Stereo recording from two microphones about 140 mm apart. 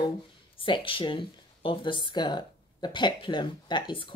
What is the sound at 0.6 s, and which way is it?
Speech, 35° left (ahead or behind).